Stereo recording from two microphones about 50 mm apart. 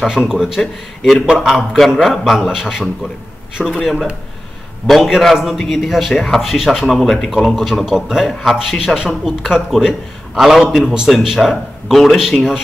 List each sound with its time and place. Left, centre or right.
0.1 s a man's voice: centre
1.4 s a man's voice: centre
3.8 s a man's voice: centre